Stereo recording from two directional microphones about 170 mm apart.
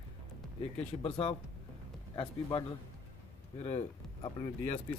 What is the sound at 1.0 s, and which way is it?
Speech, 35° left (ahead or behind).